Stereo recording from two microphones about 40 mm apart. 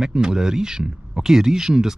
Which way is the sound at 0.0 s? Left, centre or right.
Centre.